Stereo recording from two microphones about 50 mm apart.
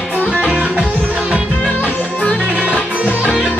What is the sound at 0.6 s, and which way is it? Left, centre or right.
Music, centre.